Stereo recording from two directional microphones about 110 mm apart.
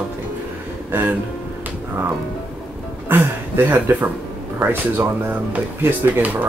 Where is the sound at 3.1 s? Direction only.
20° right (ahead or behind).